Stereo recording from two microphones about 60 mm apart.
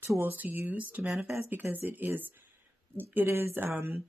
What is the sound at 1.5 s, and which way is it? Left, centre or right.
Speech, right.